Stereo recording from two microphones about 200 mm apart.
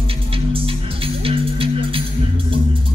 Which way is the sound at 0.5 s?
25° right (ahead or behind).